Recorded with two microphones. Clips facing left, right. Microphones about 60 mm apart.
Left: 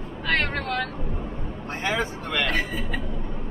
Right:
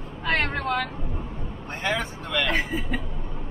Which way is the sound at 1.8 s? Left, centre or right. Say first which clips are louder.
Left 1 dB; centre.